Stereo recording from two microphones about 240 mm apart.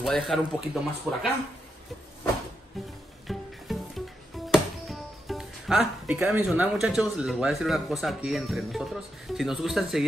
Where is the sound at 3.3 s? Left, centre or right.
Centre.